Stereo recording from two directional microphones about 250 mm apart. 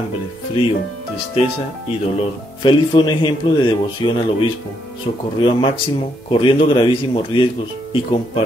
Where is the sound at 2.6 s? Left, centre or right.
Centre.